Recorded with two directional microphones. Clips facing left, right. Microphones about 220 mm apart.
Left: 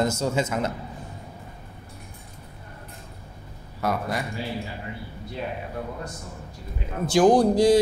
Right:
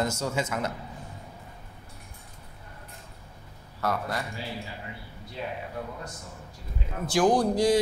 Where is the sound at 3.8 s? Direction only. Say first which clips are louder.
Left 3 dB; 15° left (ahead or behind).